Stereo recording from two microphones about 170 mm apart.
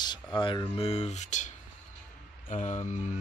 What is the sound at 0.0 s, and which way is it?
Speech, 25° left (ahead or behind).